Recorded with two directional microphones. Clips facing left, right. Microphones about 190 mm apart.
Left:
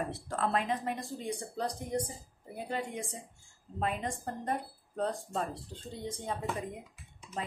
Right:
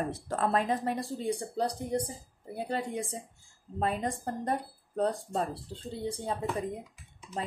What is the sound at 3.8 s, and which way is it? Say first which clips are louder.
A woman's voice: right 3 dB; 35° right (ahead or behind).